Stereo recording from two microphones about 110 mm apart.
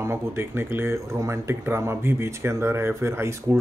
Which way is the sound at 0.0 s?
25° right (ahead or behind).